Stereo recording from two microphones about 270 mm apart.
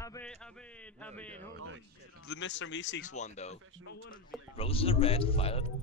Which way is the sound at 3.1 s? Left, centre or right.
Left.